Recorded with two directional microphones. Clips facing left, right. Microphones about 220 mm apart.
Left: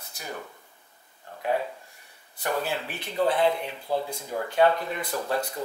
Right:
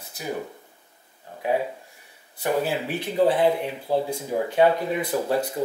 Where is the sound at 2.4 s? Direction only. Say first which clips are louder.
Right 5 dB; 10° right (ahead or behind).